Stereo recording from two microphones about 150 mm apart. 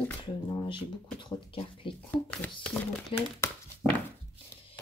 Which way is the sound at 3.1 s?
35° left (ahead or behind).